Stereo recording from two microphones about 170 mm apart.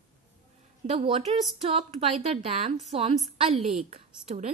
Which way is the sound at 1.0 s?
35° right (ahead or behind).